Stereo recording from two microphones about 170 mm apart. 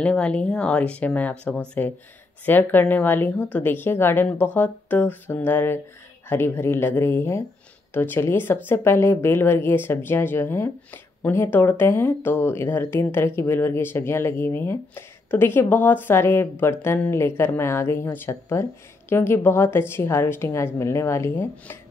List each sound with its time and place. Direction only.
0.0 s speech: 5° left (ahead or behind)